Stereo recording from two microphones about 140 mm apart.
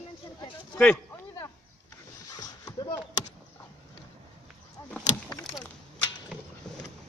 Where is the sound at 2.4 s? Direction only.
25° left (ahead or behind).